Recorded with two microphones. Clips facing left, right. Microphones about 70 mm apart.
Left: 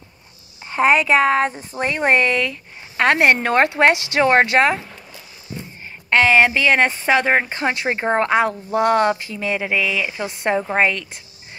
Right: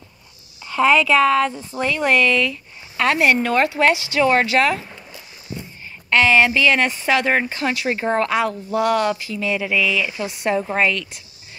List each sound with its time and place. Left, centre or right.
0.7 s speech: left